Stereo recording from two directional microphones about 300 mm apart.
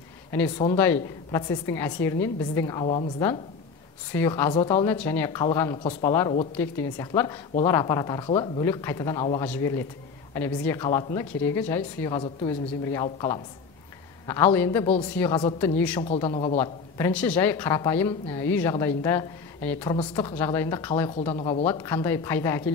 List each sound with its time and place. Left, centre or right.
0.3 s speech: centre
16.0 s speech: centre